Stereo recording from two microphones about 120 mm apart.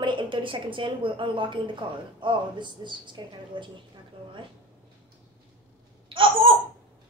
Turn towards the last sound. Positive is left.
turn(degrees=-45)  # may be behind; listen again after turning